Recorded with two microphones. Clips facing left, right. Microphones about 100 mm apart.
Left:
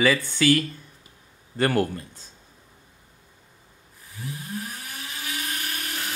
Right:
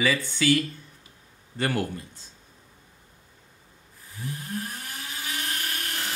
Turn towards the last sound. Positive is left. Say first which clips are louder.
# even
turn(degrees=0)  # may be behind; listen again after turning